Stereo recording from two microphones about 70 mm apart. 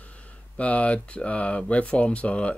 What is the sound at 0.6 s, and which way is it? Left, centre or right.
Speech, centre.